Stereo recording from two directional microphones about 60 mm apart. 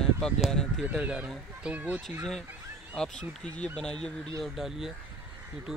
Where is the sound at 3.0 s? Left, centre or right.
Centre.